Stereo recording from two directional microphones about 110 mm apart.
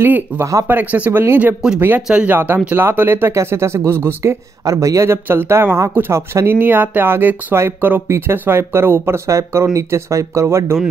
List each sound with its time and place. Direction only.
0.0 s speech: 20° right (ahead or behind)